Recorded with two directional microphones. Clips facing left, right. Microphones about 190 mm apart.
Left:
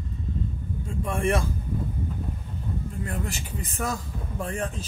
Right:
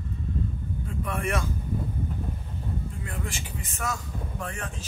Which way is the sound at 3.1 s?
40° left (ahead or behind).